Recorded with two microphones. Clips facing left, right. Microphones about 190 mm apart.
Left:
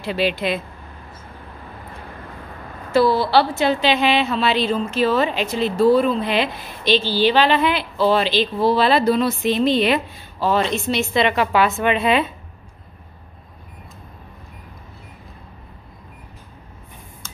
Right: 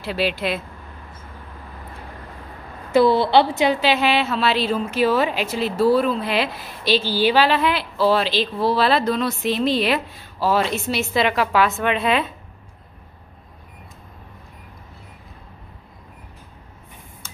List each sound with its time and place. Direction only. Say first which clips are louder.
0.0 s a woman's voice: left 2 dB; 5° right (ahead or behind)
2.9 s a woman's voice: right 1 dB; 20° right (ahead or behind); by 12.3 s centre (ahead or behind)